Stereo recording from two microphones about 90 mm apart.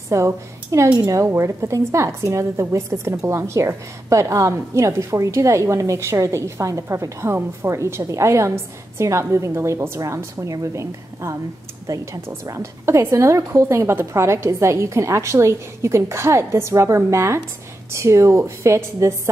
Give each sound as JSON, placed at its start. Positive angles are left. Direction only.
{"t": 0.1, "sound": "a woman's voice", "side_deg": -35}